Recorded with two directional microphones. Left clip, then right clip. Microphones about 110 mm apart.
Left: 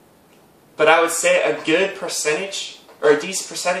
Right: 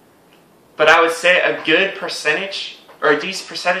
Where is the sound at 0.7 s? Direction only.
15° left (ahead or behind).